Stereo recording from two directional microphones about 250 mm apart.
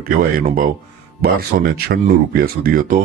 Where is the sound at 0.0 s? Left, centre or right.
Right.